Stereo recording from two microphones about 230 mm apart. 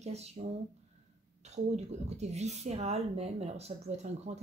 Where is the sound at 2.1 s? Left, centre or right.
Right.